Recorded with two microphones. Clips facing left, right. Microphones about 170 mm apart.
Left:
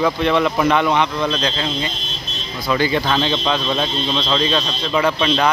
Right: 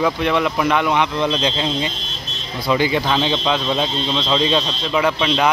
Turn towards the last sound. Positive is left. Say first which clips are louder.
# left 1 dB
turn(degrees=-5)  # may be behind; listen again after turning